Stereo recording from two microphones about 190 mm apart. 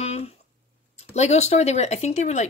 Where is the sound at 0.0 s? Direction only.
35° left (ahead or behind).